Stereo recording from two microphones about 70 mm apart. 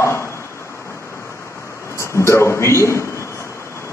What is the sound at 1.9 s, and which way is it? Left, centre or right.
A man's voice, left.